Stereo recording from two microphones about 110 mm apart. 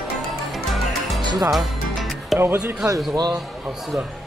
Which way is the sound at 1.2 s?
40° right (ahead or behind).